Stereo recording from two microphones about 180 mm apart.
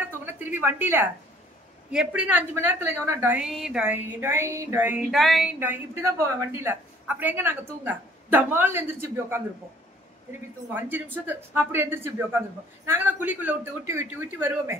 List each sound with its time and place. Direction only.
0.0 s a sound: 10° right (ahead or behind)
1.9 s a man's voice: 5° right (ahead or behind)
5.1 s a man's voice: centre (ahead or behind)
10.7 s a man's voice: 10° right (ahead or behind)